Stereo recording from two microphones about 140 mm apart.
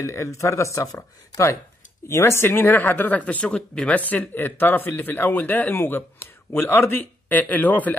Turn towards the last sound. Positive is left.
turn(degrees=10)  # may be behind; listen again after turning